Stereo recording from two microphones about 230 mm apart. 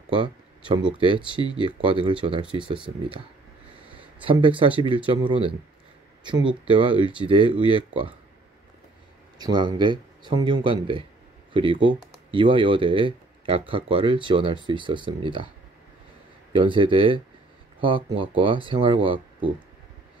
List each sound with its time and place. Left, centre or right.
0.1 s a sound: right
0.9 s speech: right
4.2 s speech: right
6.7 s speech: right
9.4 s speech: centre
16.5 s speech: right